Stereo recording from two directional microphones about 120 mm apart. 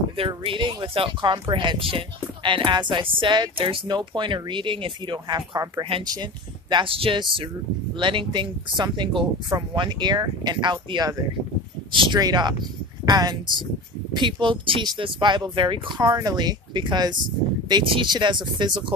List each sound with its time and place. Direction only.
0.5 s speech: 40° right (ahead or behind)
6.7 s speech: 45° right (ahead or behind)